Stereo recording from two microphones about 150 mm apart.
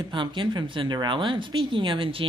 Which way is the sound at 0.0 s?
30° right (ahead or behind).